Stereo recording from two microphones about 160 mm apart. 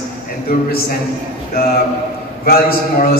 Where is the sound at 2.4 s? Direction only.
65° left (ahead or behind).